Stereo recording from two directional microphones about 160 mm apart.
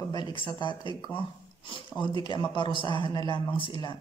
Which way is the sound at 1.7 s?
30° left (ahead or behind).